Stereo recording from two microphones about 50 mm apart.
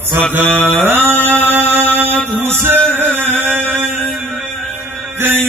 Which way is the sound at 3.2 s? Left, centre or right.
Right.